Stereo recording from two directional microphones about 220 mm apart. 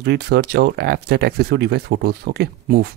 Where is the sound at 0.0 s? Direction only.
50° right (ahead or behind).